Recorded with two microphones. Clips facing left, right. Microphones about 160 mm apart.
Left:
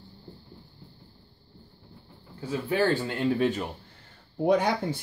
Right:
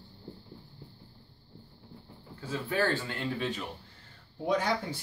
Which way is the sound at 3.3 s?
50° left (ahead or behind).